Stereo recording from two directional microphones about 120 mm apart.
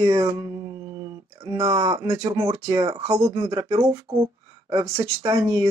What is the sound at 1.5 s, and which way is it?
Speech, 25° right (ahead or behind).